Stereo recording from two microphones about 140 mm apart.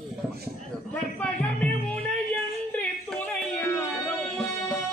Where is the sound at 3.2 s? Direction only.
15° left (ahead or behind).